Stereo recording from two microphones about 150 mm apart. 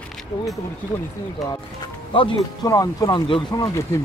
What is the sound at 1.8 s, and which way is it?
Music, 35° left (ahead or behind).